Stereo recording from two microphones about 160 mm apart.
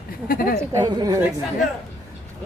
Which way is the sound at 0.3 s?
65° left (ahead or behind).